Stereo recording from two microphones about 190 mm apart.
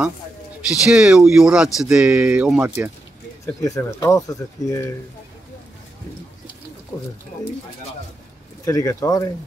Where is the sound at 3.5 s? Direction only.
15° left (ahead or behind).